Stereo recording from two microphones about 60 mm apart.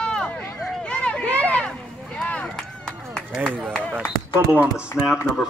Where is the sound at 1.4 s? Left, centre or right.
Centre.